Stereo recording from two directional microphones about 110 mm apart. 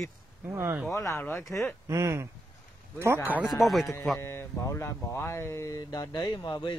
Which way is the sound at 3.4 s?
Centre (ahead or behind).